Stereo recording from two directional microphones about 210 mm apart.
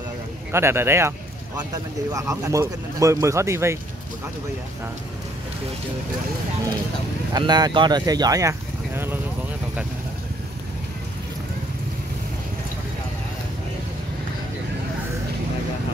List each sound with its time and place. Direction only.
0.5 s speech: 10° right (ahead or behind)
2.1 s speech: 15° right (ahead or behind)
7.3 s speech: 20° right (ahead or behind)